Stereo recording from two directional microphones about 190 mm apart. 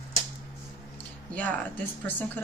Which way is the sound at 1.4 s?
10° left (ahead or behind).